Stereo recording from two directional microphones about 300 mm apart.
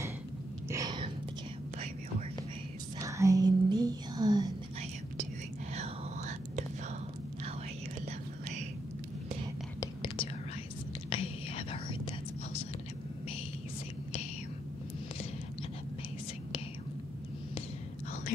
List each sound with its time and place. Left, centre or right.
0.7 s a sound: centre
3.0 s whispering: centre
5.8 s whispering: right
9.8 s whispering: centre